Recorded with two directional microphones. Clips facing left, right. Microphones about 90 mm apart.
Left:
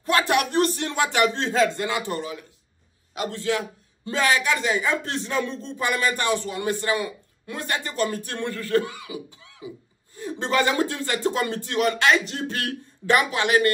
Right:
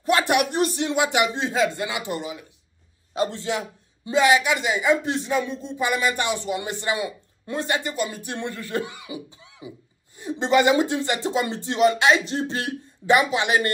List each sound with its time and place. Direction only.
0.0 s a man's voice: 20° right (ahead or behind)